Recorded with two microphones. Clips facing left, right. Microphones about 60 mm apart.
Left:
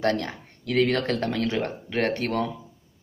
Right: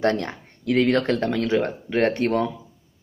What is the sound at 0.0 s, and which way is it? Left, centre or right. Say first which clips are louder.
Speech: right 3 dB; right.